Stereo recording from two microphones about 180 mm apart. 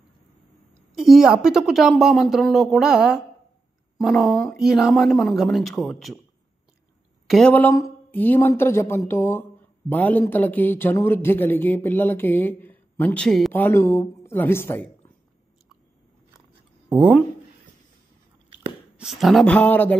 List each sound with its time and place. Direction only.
0.9 s speech: centre (ahead or behind)
7.2 s speech: 5° left (ahead or behind)
16.9 s speech: 5° right (ahead or behind)
18.9 s speech: centre (ahead or behind)